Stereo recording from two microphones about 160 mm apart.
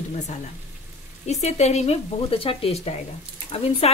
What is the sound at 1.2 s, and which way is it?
Speech, 45° left (ahead or behind).